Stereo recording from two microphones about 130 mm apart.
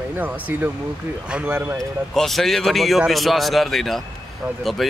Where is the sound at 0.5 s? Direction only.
20° right (ahead or behind).